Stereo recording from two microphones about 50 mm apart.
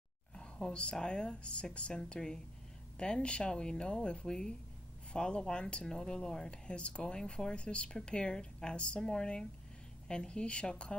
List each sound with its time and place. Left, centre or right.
0.4 s speech: centre